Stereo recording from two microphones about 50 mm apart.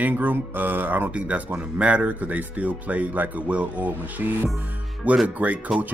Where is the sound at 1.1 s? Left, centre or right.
Right.